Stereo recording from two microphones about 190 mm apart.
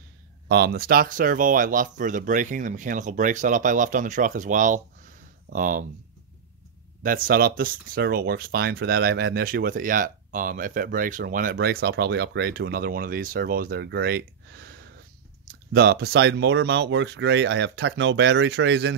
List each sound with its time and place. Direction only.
0.5 s speech: 60° right (ahead or behind)
7.0 s speech: 45° right (ahead or behind); by 18.9 s 65° right (ahead or behind)